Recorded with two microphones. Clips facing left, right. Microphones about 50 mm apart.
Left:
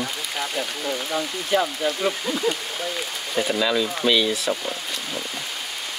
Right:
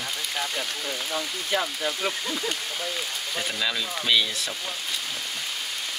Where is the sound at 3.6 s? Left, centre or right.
Centre.